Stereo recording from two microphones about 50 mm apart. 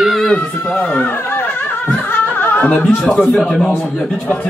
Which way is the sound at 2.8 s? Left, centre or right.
Centre.